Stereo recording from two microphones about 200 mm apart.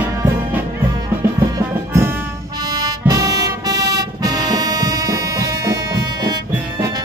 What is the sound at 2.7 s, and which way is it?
Music, 20° right (ahead or behind).